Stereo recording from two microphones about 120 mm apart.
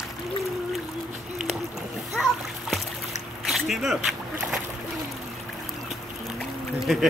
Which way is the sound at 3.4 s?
Centre (ahead or behind).